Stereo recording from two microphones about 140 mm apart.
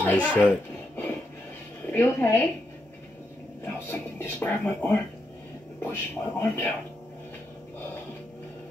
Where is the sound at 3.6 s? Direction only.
15° left (ahead or behind).